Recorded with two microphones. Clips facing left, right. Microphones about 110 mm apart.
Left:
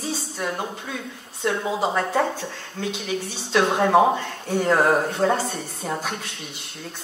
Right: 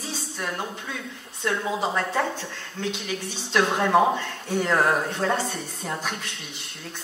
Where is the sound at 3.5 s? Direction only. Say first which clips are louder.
Left 2 dB; 5° left (ahead or behind).